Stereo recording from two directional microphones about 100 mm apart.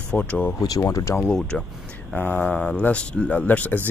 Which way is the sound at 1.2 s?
10° left (ahead or behind).